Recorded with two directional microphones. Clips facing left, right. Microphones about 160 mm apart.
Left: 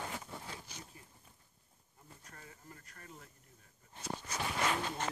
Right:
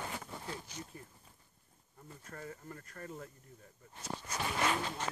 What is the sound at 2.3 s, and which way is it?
Speech, 50° right (ahead or behind).